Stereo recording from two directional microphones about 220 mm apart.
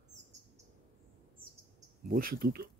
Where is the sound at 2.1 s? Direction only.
40° right (ahead or behind).